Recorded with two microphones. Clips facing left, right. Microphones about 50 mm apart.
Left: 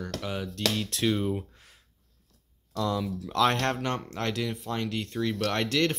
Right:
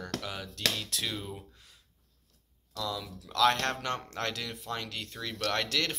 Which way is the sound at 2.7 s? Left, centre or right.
Left.